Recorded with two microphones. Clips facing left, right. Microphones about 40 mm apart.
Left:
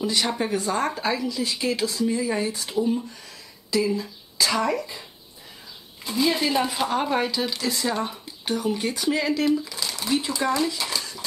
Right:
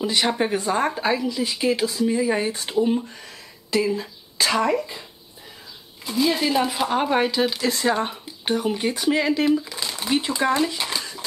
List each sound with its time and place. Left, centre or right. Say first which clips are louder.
0.0 s a woman's voice: right 3 dB; centre
2.4 s speech: right 3 dB; right
4.6 s a woman's voice: right 3 dB; centre
6.0 s speech: right 2 dB; centre
7.0 s a woman's voice: right 6 dB; centre
7.6 s speech: right 4 dB; right
8.5 s a woman's voice: right 2 dB; right